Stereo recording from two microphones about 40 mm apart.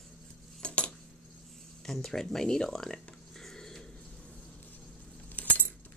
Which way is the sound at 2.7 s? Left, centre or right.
Centre.